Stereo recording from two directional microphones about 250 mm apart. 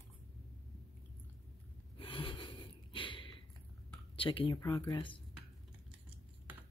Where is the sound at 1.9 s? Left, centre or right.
Left.